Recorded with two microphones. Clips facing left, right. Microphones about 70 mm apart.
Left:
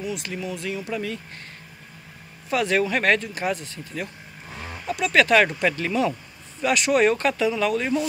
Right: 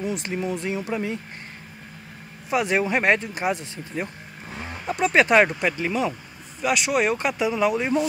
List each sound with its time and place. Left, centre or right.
0.0 s speech: right
2.5 s speech: centre